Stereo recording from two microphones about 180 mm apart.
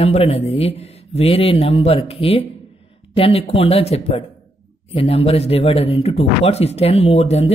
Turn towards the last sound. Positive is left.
turn(degrees=35)  # may be behind; listen again after turning